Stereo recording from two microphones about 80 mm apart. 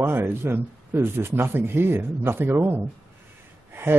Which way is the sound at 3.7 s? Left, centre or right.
Right.